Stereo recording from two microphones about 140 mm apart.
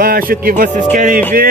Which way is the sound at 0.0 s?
90° right.